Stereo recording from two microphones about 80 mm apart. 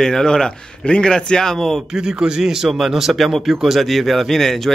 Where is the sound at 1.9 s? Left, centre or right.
Centre.